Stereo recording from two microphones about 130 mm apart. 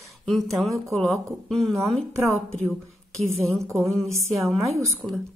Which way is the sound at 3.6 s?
20° right (ahead or behind).